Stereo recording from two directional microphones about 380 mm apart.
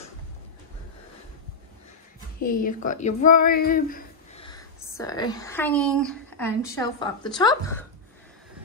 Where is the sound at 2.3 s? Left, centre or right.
Left.